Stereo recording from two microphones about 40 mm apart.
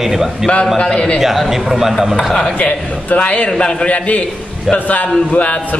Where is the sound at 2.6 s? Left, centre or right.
Left.